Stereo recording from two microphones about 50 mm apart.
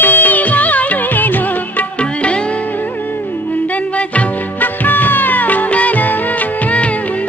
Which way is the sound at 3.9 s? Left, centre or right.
Left.